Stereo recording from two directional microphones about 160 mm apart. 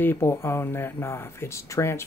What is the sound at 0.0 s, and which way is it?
Speech, 15° left (ahead or behind).